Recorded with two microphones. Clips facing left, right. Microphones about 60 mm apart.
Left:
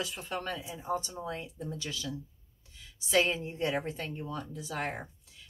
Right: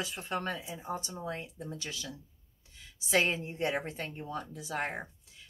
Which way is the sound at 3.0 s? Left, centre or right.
Right.